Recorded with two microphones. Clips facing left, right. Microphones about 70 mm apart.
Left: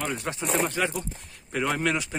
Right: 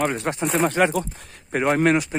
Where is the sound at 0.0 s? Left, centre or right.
Right.